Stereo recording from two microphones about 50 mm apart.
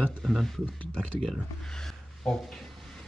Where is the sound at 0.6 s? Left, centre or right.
Left.